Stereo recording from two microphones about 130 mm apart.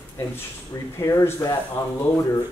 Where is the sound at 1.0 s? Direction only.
20° left (ahead or behind).